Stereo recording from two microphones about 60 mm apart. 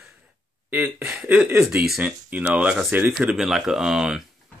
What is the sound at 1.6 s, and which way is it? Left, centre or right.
Speech, centre.